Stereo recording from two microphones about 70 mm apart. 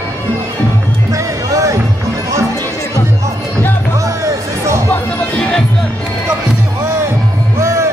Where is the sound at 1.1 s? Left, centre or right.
Right.